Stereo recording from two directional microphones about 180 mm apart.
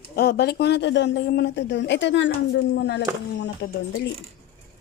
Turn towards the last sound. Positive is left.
turn(degrees=75)  # may be behind; listen again after turning